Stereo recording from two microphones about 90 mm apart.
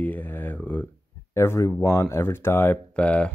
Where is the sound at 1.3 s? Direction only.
30° left (ahead or behind).